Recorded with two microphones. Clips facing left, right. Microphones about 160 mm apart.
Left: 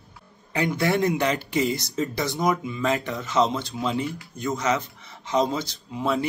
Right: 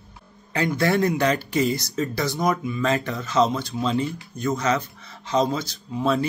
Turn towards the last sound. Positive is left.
turn(degrees=20)  # may be behind; listen again after turning